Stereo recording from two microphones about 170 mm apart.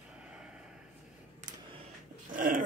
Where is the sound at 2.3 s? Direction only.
55° right (ahead or behind).